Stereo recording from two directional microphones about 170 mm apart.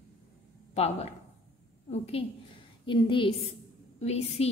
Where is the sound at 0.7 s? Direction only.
40° left (ahead or behind).